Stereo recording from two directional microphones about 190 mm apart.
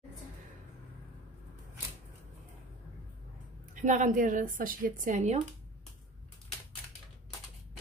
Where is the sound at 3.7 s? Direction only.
40° right (ahead or behind).